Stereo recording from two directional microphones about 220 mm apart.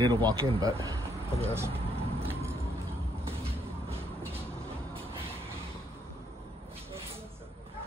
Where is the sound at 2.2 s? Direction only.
10° right (ahead or behind).